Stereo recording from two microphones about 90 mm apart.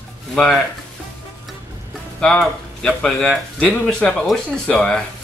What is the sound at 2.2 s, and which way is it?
Speech, 10° left (ahead or behind).